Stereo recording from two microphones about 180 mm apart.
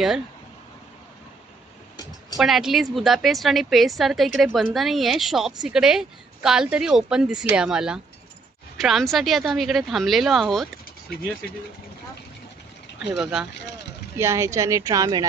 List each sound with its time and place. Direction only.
2.3 s a woman's voice: centre (ahead or behind)
13.0 s a woman's voice: 5° right (ahead or behind)
14.1 s a woman's voice: 15° right (ahead or behind)